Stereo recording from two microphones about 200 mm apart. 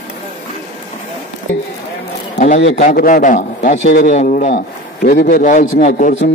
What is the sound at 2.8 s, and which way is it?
A man's voice, 40° left (ahead or behind).